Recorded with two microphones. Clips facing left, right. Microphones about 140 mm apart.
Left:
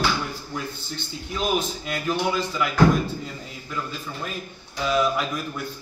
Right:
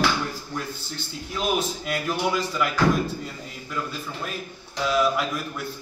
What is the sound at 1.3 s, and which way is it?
A man's voice, 5° right (ahead or behind).